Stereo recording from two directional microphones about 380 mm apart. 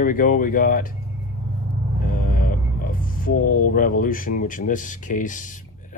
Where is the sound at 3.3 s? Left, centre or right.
Left.